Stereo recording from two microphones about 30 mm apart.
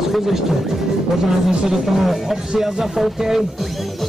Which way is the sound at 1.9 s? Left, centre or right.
Centre.